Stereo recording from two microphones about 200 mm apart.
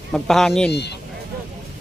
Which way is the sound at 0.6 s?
55° left (ahead or behind).